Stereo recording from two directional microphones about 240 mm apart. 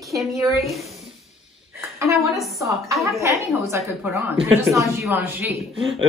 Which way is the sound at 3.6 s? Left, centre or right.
Centre.